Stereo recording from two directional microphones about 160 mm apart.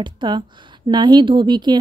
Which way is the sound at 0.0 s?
30° right (ahead or behind).